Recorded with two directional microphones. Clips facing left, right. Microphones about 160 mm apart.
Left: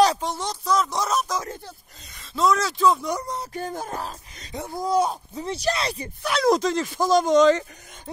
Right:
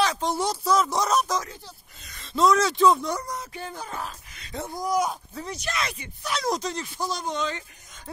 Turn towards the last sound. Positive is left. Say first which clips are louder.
# left 14 dB
turn(degrees=90)